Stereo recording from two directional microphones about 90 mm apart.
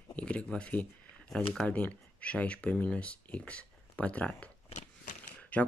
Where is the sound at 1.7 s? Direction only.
15° left (ahead or behind).